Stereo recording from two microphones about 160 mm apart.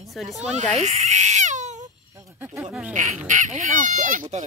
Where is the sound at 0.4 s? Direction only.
45° right (ahead or behind).